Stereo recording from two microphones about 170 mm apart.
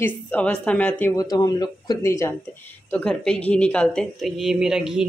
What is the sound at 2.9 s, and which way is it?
A woman's voice, 5° left (ahead or behind).